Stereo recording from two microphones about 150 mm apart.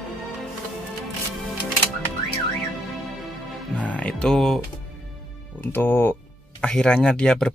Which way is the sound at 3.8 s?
10° left (ahead or behind).